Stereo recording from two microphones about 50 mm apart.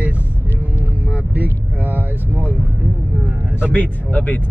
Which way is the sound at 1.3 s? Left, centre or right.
Right.